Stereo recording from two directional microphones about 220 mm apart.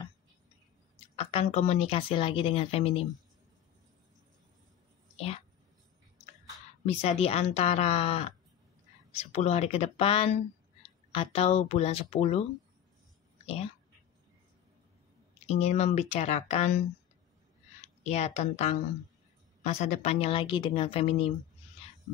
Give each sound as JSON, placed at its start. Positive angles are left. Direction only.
{"t": 1.1, "sound": "speech", "side_deg": 25}
{"t": 5.1, "sound": "a sound", "side_deg": 25}
{"t": 6.9, "sound": "speech", "side_deg": 25}
{"t": 15.4, "sound": "speech", "side_deg": 30}
{"t": 18.0, "sound": "speech", "side_deg": 30}